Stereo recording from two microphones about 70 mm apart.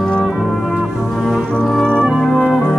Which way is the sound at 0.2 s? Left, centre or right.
Centre.